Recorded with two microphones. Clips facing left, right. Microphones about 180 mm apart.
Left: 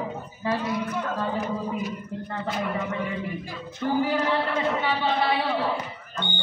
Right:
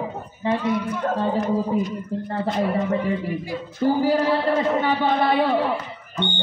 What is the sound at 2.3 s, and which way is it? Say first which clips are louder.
A man's voice: right 6 dB; 35° right (ahead or behind).